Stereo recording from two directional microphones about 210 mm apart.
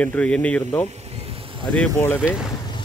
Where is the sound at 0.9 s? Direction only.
30° right (ahead or behind).